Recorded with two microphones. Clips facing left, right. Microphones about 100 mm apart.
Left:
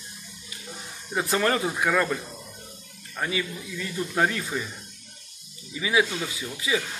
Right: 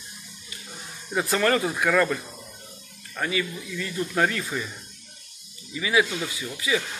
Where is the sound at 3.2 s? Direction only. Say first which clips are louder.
Right 1 dB; 20° left (ahead or behind).